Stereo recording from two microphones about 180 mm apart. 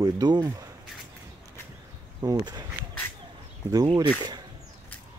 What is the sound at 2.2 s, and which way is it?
Speech, 20° right (ahead or behind).